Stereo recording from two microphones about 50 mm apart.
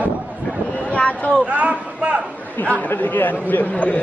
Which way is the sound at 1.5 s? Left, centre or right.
Right.